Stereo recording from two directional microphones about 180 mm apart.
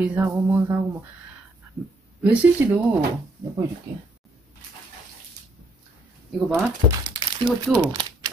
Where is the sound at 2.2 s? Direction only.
5° right (ahead or behind).